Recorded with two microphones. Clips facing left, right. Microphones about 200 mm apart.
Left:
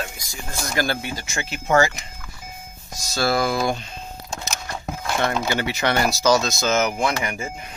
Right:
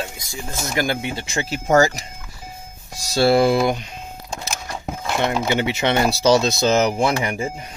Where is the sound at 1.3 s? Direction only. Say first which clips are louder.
Right 3 dB; 40° right (ahead or behind).